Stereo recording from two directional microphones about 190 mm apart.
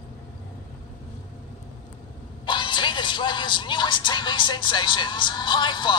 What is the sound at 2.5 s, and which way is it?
Music, 25° left (ahead or behind).